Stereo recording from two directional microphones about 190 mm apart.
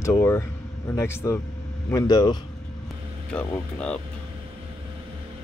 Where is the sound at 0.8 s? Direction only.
15° left (ahead or behind).